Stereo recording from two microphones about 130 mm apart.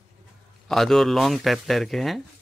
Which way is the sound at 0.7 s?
Centre (ahead or behind).